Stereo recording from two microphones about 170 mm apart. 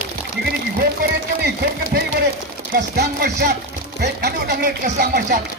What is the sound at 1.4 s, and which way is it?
A woman's voice, 70° right (ahead or behind).